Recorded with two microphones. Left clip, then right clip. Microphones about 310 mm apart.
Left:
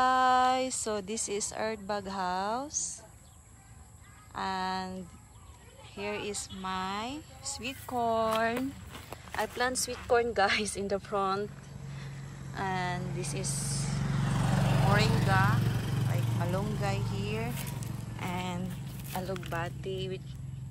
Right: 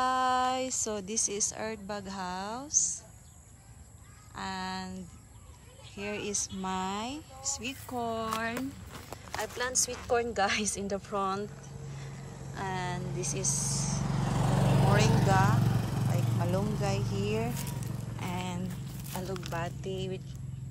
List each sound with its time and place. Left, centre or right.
0.0 s speech: centre
4.4 s speech: centre
5.9 s speech: centre
12.5 s speech: centre
13.9 s vehicle: right
15.2 s speech: centre
15.5 s vehicle: right
16.5 s speech: centre
17.5 s a sound: centre
19.1 s speech: centre